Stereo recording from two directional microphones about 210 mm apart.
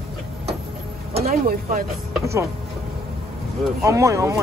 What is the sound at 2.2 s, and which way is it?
Speech, 15° right (ahead or behind).